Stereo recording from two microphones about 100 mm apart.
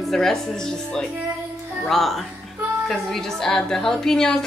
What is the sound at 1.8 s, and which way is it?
Speech, centre (ahead or behind).